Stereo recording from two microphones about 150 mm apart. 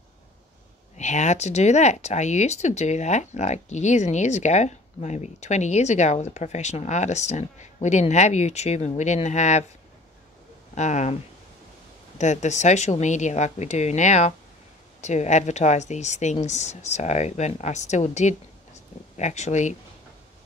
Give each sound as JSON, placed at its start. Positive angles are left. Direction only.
{"t": 0.9, "sound": "speech", "side_deg": 50}
{"t": 10.7, "sound": "speech", "side_deg": 50}
{"t": 12.2, "sound": "speech", "side_deg": 50}